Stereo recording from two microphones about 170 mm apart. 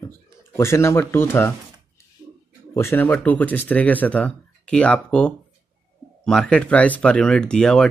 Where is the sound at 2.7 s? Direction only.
15° left (ahead or behind).